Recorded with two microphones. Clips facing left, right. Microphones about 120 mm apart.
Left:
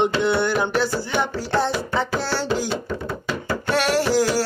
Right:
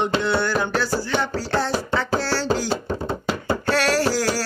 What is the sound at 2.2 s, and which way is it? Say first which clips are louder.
Chopping: right 1 dB; 20° left (ahead or behind).